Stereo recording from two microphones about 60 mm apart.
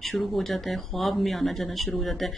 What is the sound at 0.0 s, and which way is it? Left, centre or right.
Speech, centre.